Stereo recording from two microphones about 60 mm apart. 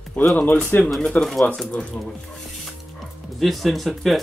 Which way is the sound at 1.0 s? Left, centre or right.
Centre.